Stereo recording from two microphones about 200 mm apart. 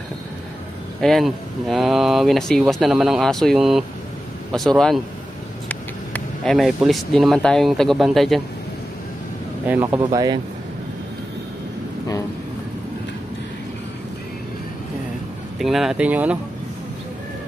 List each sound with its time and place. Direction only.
1.0 s speech: centre (ahead or behind)
9.7 s speech: 15° right (ahead or behind)
15.6 s speech: centre (ahead or behind)